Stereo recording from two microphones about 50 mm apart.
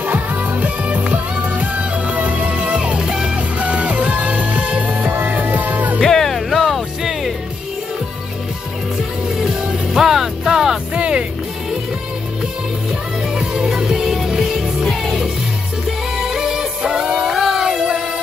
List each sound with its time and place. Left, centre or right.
0.0 s music: right; by 3.3 s centre
3.3 s music: right
5.9 s music: centre
9.4 s music: centre
13.3 s music: centre